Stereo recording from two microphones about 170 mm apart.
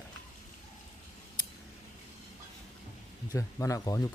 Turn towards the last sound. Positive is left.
turn(degrees=20)  # may be behind; listen again after turning